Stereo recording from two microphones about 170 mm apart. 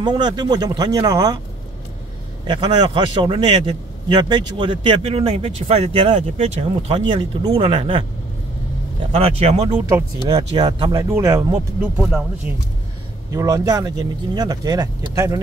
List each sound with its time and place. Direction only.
0.0 s speech: 25° right (ahead or behind)
2.4 s a man's voice: 30° right (ahead or behind)
9.1 s a man's voice: 40° right (ahead or behind)
10.2 s speech: 25° right (ahead or behind)
11.0 s speech: 15° right (ahead or behind)